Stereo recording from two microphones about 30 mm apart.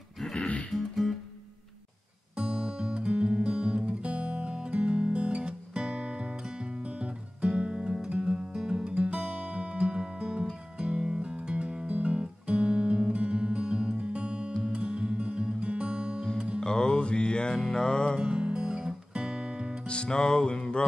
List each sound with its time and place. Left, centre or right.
0.2 s music: left
0.7 s music: centre
2.3 s music: right
16.6 s music: left
18.2 s guitar: right
19.9 s music: left